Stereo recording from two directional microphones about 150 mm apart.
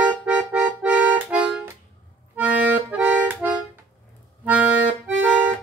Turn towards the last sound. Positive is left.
turn(degrees=-10)  # may be behind; listen again after turning